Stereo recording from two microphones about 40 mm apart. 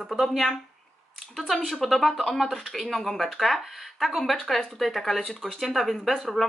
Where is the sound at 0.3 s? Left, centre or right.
Centre.